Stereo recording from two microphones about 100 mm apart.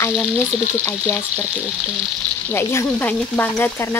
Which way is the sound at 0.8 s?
25° left (ahead or behind).